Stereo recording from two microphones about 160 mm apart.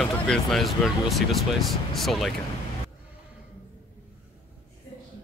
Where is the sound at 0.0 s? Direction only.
5° left (ahead or behind).